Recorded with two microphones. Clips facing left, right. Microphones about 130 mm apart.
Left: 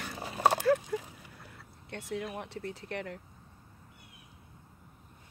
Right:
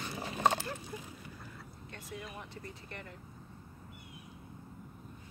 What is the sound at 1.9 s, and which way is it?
Speech, 75° left (ahead or behind).